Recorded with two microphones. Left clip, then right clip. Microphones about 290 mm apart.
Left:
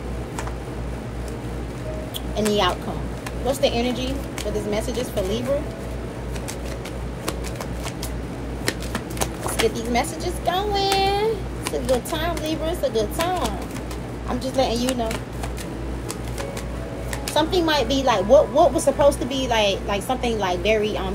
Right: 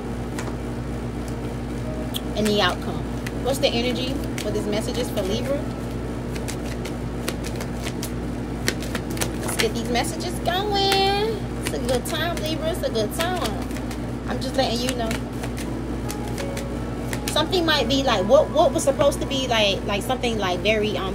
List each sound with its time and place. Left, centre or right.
2.3 s a woman's voice: centre
9.6 s a woman's voice: centre
17.3 s a woman's voice: centre